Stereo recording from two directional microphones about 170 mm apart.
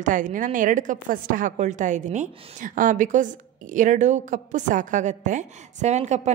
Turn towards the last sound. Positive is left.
turn(degrees=-40)  # may be behind; listen again after turning